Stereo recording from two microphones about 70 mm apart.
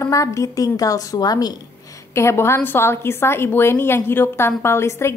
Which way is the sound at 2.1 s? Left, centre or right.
Left.